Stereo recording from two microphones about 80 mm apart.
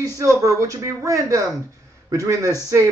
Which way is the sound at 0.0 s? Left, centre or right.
Right.